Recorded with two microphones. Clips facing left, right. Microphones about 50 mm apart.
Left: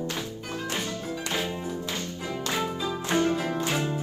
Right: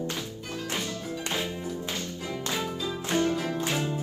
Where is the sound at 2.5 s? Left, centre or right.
Left.